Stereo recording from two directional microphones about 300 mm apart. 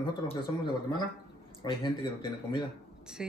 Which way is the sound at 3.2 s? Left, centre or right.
Centre.